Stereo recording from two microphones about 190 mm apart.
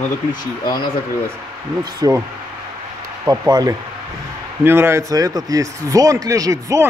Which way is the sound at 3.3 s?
20° right (ahead or behind).